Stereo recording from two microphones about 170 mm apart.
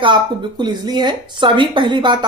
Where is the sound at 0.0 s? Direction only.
25° right (ahead or behind).